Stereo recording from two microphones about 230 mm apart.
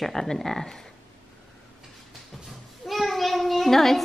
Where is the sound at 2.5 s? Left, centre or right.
Centre.